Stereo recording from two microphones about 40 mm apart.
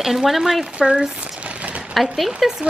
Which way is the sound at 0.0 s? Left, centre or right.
Centre.